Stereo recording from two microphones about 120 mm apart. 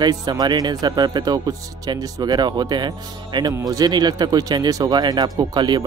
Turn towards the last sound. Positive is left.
turn(degrees=-40)  # may be behind; listen again after turning